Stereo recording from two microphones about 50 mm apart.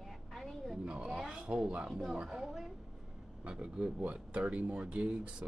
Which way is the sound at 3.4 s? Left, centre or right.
Centre.